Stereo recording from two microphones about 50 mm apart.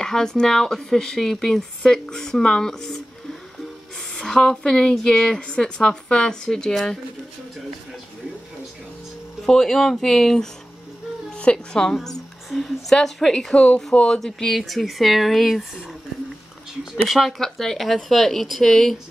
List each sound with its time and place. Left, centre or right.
0.0 s speech: centre
4.1 s speech: centre
9.5 s speech: centre
11.2 s music: left
11.5 s a woman's voice: centre
12.9 s speech: centre
14.2 s speech: centre
16.9 s speech: centre